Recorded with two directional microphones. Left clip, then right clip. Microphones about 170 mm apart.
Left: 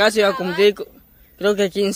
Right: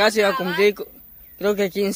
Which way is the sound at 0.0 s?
10° left (ahead or behind).